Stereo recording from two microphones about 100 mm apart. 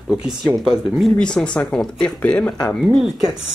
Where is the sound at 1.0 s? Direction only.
5° left (ahead or behind).